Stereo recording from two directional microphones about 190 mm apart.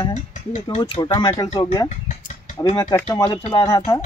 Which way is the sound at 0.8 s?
25° left (ahead or behind).